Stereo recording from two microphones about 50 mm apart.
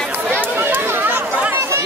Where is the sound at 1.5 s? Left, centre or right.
Right.